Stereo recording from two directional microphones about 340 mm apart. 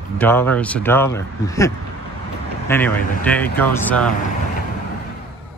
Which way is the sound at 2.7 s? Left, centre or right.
Centre.